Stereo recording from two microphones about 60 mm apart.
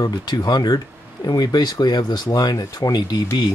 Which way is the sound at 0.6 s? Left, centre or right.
Left.